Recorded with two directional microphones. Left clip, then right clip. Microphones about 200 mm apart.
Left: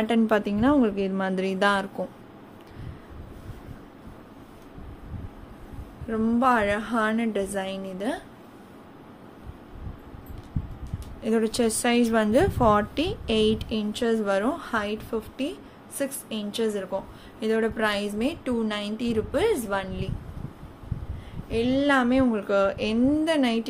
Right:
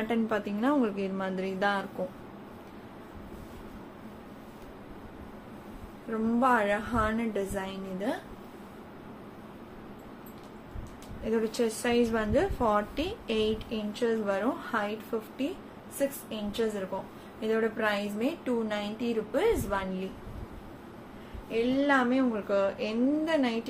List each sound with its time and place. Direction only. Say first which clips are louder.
0.0 s a woman's voice: left 7 dB; 50° left (ahead or behind)
6.2 s a woman's voice: left 3 dB; 45° left (ahead or behind)
11.2 s a woman's voice: left 5 dB; 55° left (ahead or behind)
21.5 s a woman's voice: left 3 dB; 55° left (ahead or behind)